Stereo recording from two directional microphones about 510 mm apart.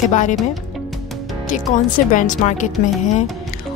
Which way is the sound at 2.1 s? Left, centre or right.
Centre.